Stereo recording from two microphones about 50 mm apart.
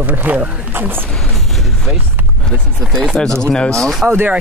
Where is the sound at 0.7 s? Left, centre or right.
Right.